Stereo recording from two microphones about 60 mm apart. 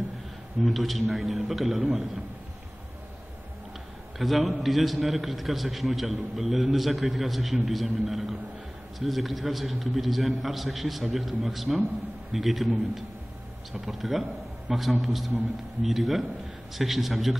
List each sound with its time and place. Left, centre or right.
0.6 s a man's voice: centre
4.2 s a man's voice: centre